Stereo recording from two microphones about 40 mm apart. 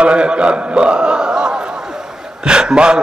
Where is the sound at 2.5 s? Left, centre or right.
Right.